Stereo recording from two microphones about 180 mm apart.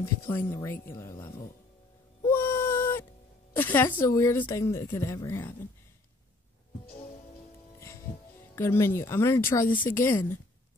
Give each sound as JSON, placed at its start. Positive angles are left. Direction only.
{"t": 0.0, "sound": "a woman's voice", "side_deg": 15}
{"t": 2.2, "sound": "a sound", "side_deg": 15}
{"t": 3.5, "sound": "a woman's voice", "side_deg": 10}
{"t": 8.5, "sound": "a woman's voice", "side_deg": 15}